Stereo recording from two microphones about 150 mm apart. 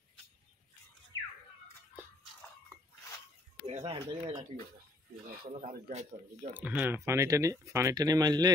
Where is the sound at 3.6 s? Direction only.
45° right (ahead or behind).